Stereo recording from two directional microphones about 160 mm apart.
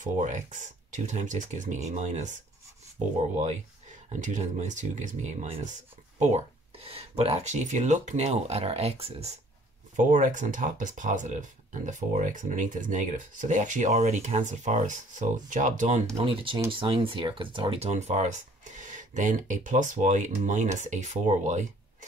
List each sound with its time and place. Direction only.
0.0 s speech: 50° right (ahead or behind)
4.1 s speech: 50° right (ahead or behind)
9.9 s speech: 55° right (ahead or behind)
16.2 s speech: 35° right (ahead or behind)